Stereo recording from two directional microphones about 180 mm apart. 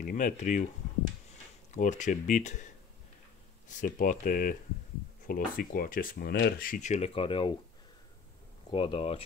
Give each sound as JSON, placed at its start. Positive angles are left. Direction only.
{"t": 0.0, "sound": "speech", "side_deg": 45}
{"t": 1.7, "sound": "speech", "side_deg": 45}
{"t": 8.7, "sound": "speech", "side_deg": 30}